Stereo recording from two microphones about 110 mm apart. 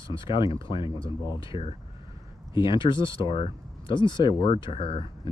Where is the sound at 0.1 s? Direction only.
50° left (ahead or behind).